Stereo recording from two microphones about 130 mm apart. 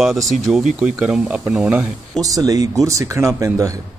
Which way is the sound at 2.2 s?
25° right (ahead or behind).